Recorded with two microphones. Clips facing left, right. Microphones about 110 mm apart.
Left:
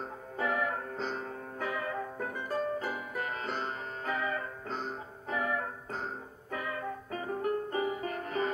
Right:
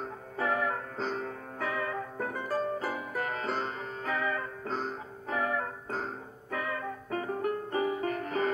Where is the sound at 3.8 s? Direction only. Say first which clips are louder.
Right 2 dB; 30° left (ahead or behind).